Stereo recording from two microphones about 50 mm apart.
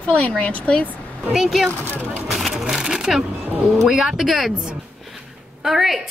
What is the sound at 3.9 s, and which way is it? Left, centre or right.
Speech, centre.